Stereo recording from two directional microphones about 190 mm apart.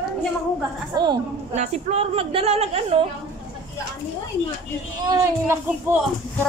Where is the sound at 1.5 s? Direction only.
35° right (ahead or behind).